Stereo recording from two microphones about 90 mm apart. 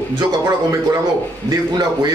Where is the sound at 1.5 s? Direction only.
40° right (ahead or behind).